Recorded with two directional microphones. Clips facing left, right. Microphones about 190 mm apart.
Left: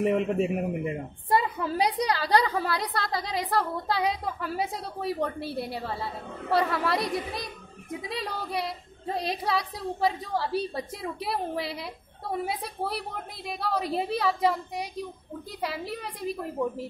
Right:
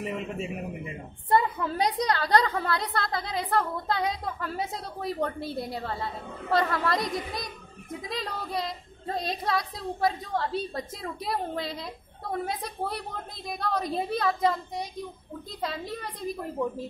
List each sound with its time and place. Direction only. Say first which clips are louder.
0.0 s a man's voice: left 8 dB; 55° left (ahead or behind)
1.3 s a sound: right 1 dB; 10° left (ahead or behind)
2.0 s a woman's voice: right 2 dB; 10° left (ahead or behind)
15.9 s a woman's voice: left 1 dB; 10° left (ahead or behind)